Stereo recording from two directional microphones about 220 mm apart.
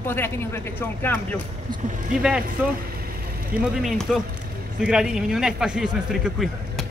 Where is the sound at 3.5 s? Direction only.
Centre (ahead or behind).